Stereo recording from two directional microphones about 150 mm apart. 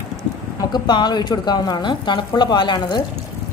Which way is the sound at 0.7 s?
30° left (ahead or behind).